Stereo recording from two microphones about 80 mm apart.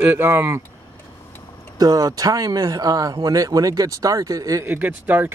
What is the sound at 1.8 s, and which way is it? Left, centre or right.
Speech, right.